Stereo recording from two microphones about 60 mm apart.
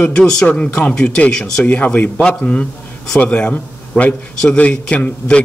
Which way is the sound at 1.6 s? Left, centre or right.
Left.